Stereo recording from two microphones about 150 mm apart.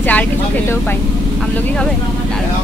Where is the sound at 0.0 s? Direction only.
10° left (ahead or behind).